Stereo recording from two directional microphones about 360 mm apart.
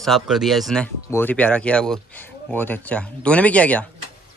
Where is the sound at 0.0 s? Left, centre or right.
Centre.